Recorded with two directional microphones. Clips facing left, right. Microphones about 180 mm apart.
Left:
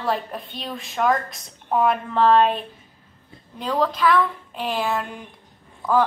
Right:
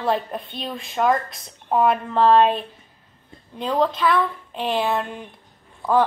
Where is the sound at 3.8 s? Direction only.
25° right (ahead or behind).